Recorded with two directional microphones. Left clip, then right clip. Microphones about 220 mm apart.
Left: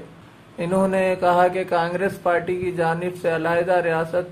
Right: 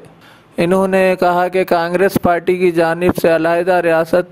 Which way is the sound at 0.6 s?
50° right (ahead or behind).